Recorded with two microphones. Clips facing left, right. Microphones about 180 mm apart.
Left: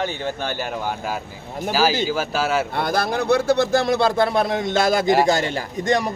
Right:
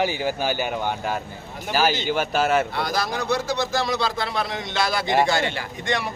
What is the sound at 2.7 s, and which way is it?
A man's voice, 55° left (ahead or behind).